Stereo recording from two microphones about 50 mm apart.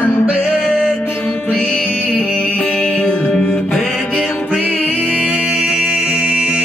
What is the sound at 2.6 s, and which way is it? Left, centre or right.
Music, left.